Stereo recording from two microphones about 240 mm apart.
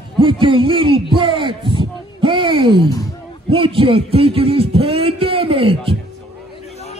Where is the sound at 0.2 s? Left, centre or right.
Right.